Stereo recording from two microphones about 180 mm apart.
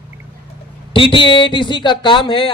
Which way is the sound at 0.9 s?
30° left (ahead or behind).